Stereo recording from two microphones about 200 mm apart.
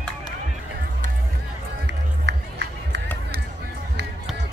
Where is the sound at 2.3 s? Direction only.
60° right (ahead or behind).